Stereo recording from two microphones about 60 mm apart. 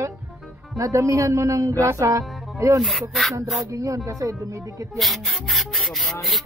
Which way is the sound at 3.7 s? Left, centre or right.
Right.